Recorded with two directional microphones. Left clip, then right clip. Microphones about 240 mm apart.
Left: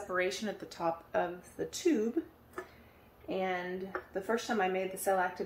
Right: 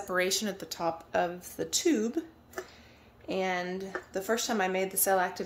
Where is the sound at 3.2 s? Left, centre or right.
Right.